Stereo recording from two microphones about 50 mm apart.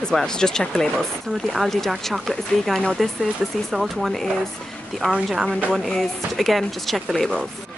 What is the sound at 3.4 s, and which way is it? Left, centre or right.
Speech, centre.